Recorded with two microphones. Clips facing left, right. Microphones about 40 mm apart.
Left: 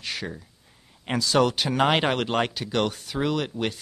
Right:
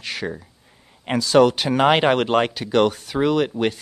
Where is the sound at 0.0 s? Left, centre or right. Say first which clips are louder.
Right 5 dB; right.